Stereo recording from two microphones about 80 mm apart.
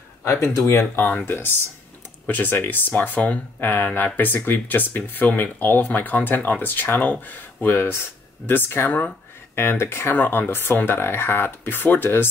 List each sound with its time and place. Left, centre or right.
0.2 s speech: left